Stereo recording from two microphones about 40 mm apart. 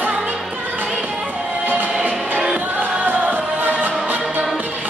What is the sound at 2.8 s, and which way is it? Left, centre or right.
Music, right.